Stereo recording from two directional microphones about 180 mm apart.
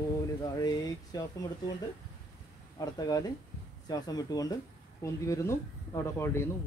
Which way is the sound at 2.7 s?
20° left (ahead or behind).